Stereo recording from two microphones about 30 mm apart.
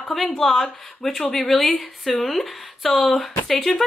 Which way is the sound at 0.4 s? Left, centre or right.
Centre.